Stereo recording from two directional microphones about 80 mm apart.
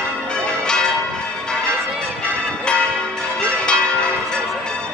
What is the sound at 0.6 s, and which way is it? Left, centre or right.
Change ringing, centre.